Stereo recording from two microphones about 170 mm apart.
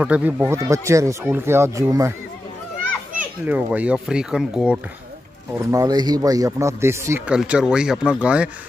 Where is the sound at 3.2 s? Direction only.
10° right (ahead or behind).